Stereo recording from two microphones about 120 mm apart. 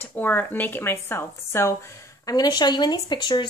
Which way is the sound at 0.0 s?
15° left (ahead or behind).